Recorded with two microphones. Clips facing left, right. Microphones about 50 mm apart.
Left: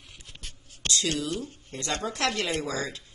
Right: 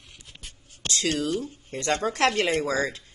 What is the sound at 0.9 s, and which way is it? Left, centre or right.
A woman's voice, right.